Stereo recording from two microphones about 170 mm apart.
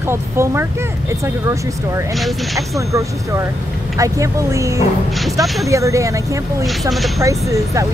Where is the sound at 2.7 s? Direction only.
20° right (ahead or behind).